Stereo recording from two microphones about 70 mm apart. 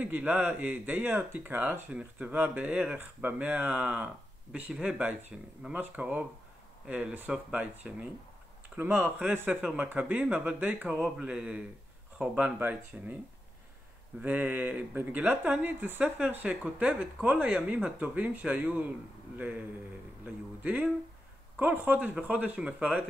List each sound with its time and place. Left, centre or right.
0.0 s speech: right
14.2 s speech: right